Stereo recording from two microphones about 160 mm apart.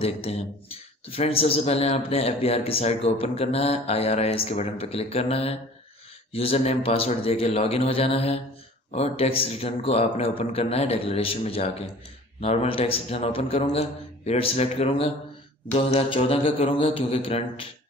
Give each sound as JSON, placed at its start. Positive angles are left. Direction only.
{"t": 0.0, "sound": "a man's voice", "side_deg": 40}